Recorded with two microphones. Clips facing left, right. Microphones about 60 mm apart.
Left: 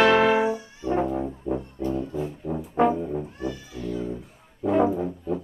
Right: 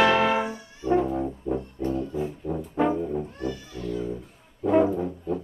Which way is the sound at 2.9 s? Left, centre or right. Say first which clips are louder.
Even; centre.